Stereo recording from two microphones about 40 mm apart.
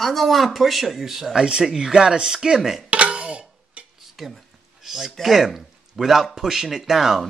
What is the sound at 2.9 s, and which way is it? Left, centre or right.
Music, right.